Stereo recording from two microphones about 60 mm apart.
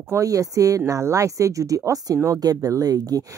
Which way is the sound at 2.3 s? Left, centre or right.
Right.